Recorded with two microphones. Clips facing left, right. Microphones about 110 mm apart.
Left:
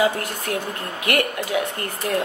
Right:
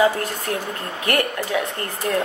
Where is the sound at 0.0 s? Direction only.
30° right (ahead or behind).